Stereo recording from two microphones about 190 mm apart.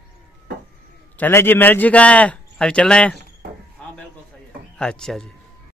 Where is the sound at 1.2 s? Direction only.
10° left (ahead or behind).